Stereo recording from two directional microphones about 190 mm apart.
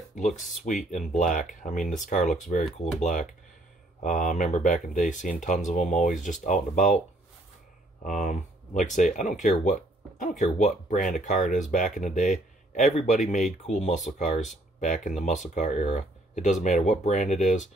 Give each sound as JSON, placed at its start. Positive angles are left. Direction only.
{"t": 0.1, "sound": "speech", "side_deg": 40}
{"t": 8.0, "sound": "speech", "side_deg": 40}